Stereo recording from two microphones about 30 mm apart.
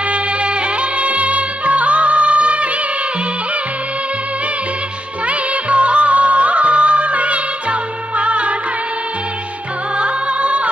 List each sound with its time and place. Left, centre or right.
0.1 s music: right
5.2 s music of bollywood: right
9.9 s music: right